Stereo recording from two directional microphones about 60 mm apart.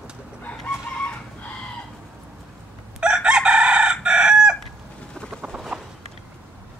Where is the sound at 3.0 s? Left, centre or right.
Centre.